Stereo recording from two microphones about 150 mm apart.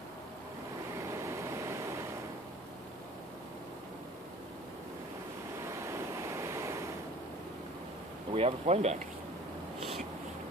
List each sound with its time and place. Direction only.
0.9 s vehicle: 20° right (ahead or behind)
5.7 s waves: 20° right (ahead or behind)
8.3 s speech: 40° right (ahead or behind)
9.8 s a sound: centre (ahead or behind)